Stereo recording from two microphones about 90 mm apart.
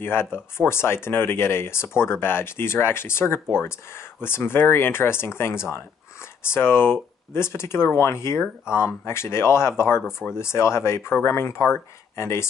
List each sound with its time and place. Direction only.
0.0 s speech: 25° left (ahead or behind)